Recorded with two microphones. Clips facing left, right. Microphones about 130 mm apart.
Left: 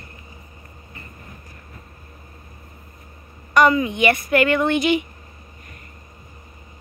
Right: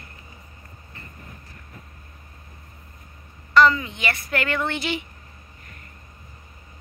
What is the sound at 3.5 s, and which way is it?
Speech, 15° left (ahead or behind).